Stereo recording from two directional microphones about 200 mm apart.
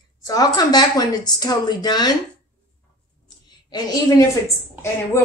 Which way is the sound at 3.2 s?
20° left (ahead or behind).